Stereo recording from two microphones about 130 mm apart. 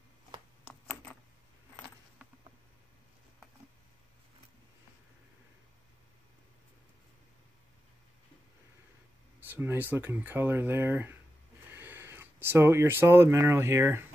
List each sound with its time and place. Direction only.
9.5 s speech: 15° right (ahead or behind)